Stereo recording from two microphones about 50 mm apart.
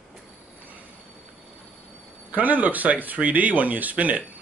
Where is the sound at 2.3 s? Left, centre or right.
Right.